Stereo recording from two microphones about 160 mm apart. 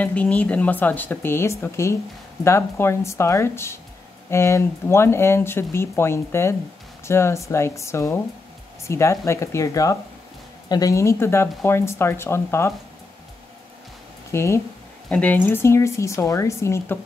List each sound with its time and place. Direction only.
0.0 s a woman's voice: 10° left (ahead or behind)
14.3 s speech: 20° left (ahead or behind)